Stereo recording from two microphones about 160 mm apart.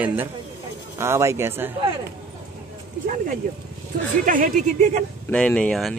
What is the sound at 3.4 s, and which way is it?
Speech, 60° right (ahead or behind).